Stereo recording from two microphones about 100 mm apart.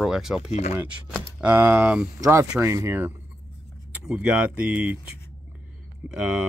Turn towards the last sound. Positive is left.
turn(degrees=-10)  # may be behind; listen again after turning